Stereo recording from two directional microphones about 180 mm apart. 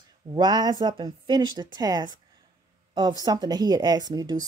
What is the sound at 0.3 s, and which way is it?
Speech, 25° right (ahead or behind).